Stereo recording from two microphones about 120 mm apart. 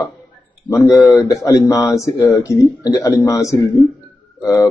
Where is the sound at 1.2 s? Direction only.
25° left (ahead or behind).